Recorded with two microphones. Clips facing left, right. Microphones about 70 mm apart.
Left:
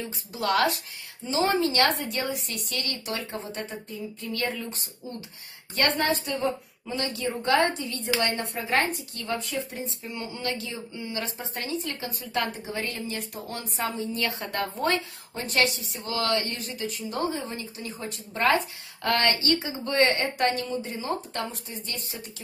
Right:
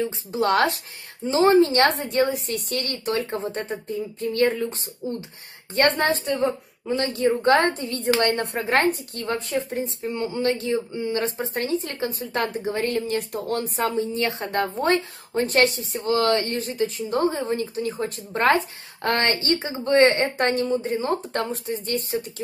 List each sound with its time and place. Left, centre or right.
0.0 s a woman's voice: right
14.1 s speech: right
19.0 s speech: right